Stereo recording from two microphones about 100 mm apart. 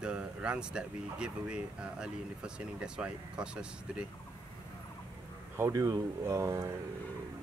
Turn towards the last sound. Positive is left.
turn(degrees=-30)  # may be behind; listen again after turning